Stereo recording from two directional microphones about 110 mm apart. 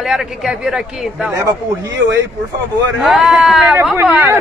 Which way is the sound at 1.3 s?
30° right (ahead or behind).